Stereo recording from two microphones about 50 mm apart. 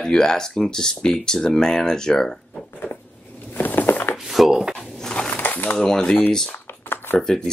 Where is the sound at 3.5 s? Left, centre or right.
Left.